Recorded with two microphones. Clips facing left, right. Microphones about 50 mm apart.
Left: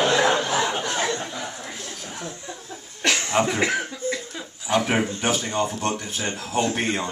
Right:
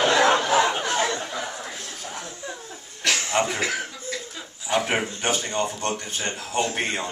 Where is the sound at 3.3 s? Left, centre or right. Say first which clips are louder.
Left 2 dB; centre.